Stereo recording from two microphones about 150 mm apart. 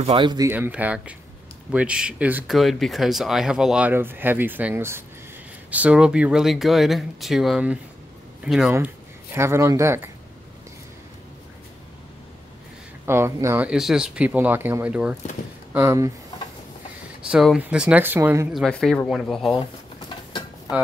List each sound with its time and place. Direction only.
0.0 s speech: 35° right (ahead or behind)
0.5 s speech: 10° right (ahead or behind)
2.5 s speech: centre (ahead or behind)
8.7 s speech: 15° right (ahead or behind)
13.0 s speech: 15° right (ahead or behind)
13.7 s speech: 5° right (ahead or behind)
17.3 s speech: 5° right (ahead or behind)
18.5 s speech: centre (ahead or behind)